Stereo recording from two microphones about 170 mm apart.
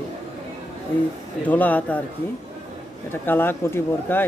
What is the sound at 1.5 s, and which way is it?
Speech, 10° left (ahead or behind).